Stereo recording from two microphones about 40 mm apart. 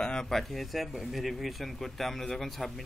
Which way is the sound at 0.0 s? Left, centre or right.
Centre.